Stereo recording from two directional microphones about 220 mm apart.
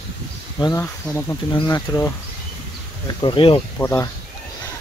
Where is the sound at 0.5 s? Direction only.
15° left (ahead or behind).